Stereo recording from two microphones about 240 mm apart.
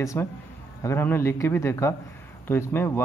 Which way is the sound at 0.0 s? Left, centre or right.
Centre.